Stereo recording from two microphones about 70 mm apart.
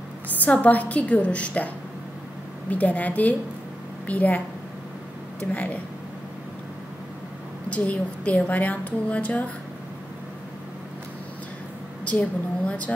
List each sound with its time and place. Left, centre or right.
0.3 s a woman's voice: left
2.7 s a woman's voice: left
5.4 s a woman's voice: left
7.7 s a woman's voice: centre
12.0 s a woman's voice: centre